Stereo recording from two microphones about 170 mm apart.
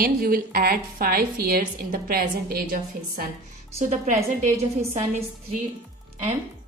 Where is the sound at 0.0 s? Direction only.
60° right (ahead or behind).